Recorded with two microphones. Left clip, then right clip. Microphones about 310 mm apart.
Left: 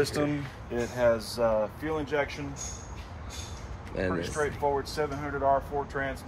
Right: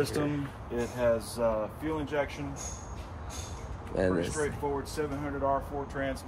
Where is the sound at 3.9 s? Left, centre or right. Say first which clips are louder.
Right 3 dB; centre.